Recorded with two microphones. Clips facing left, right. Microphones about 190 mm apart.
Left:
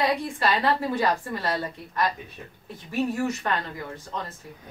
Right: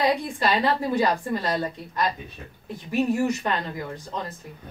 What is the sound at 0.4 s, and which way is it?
A woman's voice, 15° right (ahead or behind).